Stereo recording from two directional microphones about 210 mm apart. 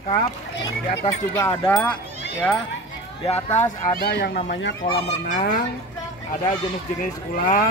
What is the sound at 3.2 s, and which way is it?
Speech, 30° left (ahead or behind).